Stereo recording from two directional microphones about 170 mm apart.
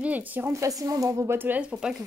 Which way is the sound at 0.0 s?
10° right (ahead or behind).